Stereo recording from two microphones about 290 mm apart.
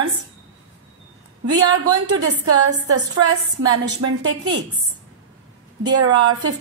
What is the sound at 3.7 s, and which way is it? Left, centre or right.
Speech, right.